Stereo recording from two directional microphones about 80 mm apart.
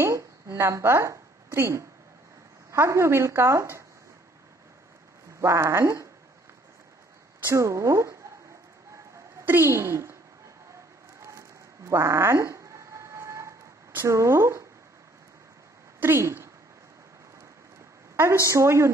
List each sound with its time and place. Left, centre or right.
0.0 s a woman's voice: right
5.4 s a woman's voice: right
7.4 s a woman's voice: right
9.4 s speech: right
11.1 s a sound: right
14.0 s a woman's voice: right
16.0 s speech: right
18.1 s a sound: right
18.5 s a woman's voice: right